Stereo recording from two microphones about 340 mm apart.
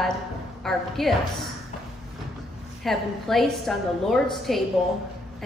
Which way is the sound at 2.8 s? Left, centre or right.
Centre.